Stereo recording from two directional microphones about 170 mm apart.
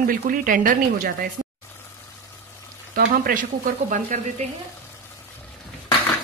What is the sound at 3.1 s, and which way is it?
Speech, 55° right (ahead or behind).